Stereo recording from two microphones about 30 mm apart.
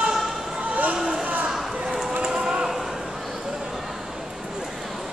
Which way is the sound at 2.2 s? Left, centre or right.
Right.